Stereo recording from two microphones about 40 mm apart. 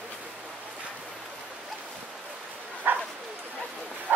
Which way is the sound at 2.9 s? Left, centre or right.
Right.